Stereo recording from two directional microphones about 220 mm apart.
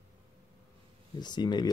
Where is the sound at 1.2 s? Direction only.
20° left (ahead or behind).